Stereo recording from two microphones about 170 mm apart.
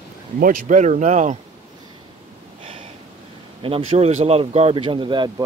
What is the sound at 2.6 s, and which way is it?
Snort, 30° right (ahead or behind).